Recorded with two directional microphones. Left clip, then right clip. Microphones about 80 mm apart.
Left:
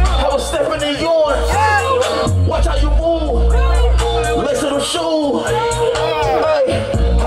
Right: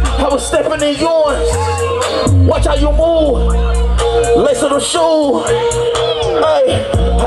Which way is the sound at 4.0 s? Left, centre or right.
Right.